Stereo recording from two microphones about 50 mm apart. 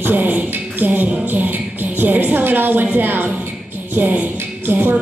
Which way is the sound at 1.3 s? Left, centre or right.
Right.